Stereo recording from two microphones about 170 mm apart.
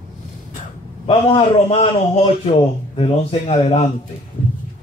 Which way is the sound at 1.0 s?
35° left (ahead or behind).